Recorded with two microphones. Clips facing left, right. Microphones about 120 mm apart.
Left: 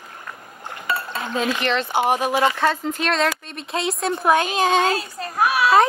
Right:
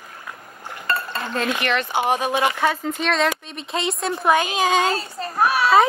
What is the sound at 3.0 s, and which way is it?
Speech, centre (ahead or behind).